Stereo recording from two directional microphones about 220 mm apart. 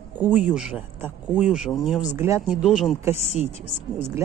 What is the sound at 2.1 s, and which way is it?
Speech, 15° right (ahead or behind).